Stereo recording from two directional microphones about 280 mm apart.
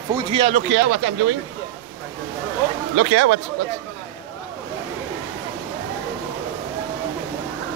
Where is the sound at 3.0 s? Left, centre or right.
Right.